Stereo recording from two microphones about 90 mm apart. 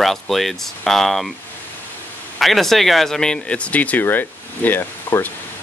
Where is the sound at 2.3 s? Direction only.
Centre (ahead or behind).